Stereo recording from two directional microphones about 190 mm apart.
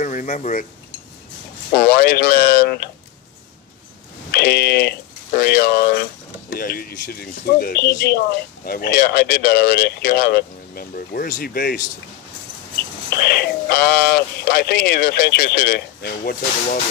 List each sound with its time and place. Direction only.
0.0 s speech: 40° left (ahead or behind)
1.8 s speech: 50° left (ahead or behind)
4.3 s speech: 55° left (ahead or behind)
13.1 s speech: 60° left (ahead or behind)